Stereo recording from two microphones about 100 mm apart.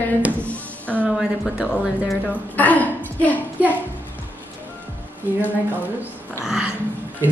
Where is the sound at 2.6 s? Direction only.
15° left (ahead or behind).